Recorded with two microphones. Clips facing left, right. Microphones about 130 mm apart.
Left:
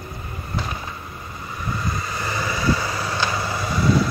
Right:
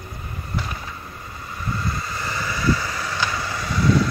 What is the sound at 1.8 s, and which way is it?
Vehicle, 15° left (ahead or behind).